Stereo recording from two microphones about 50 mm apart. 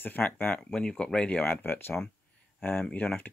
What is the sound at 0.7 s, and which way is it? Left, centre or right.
Speech, centre.